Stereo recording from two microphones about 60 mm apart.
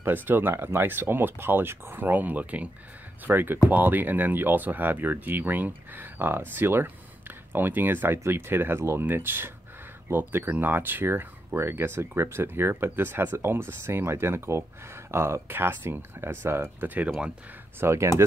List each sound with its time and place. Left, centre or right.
0.0 s speech: right